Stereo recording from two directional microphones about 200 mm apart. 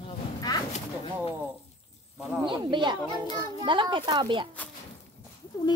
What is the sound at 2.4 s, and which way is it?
A child's voice, 25° right (ahead or behind).